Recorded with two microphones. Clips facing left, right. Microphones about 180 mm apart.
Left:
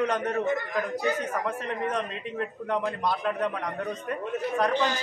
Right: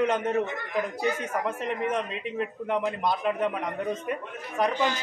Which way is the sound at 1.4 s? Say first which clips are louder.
Right 1 dB; 10° right (ahead or behind).